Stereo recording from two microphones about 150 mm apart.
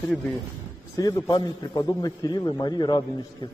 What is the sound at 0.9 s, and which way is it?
A man's voice, 25° left (ahead or behind).